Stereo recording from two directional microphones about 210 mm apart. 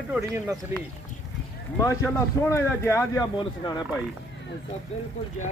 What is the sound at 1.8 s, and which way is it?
A man's voice, 15° left (ahead or behind).